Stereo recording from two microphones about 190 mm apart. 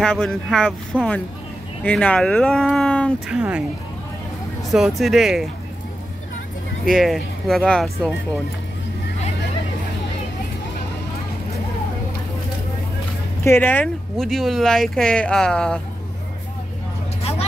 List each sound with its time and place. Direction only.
0.0 s speech: 5° left (ahead or behind)
4.6 s speech: centre (ahead or behind)
6.9 s speech: centre (ahead or behind)
13.4 s speech: 10° left (ahead or behind)
17.2 s a sound: 35° left (ahead or behind)